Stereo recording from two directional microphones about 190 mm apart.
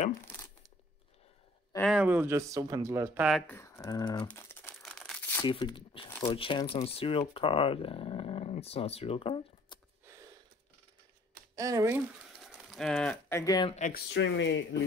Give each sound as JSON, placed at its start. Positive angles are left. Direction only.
{"t": 1.8, "sound": "speech", "side_deg": 0}
{"t": 3.3, "sound": "crumpling", "side_deg": 5}
{"t": 5.4, "sound": "speech", "side_deg": 25}
{"t": 11.5, "sound": "speech", "side_deg": -15}
{"t": 12.4, "sound": "cattle", "side_deg": 0}
{"t": 13.4, "sound": "speech", "side_deg": 20}
{"t": 13.7, "sound": "speech", "side_deg": 40}
{"t": 13.9, "sound": "speech", "side_deg": 70}